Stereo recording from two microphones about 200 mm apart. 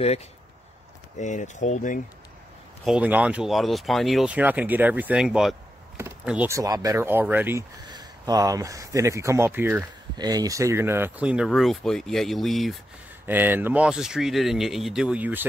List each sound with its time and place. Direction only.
1.1 s speech: 35° left (ahead or behind)
2.8 s speech: 5° right (ahead or behind)
13.3 s speech: 10° right (ahead or behind)